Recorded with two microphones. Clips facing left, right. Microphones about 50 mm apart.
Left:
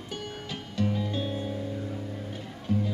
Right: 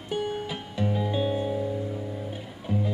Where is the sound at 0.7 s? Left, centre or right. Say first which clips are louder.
Right 2 dB; centre.